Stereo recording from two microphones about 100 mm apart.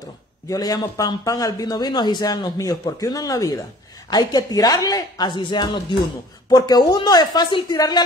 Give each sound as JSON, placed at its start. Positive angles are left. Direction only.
{"t": 0.5, "sound": "a man's voice", "side_deg": 40}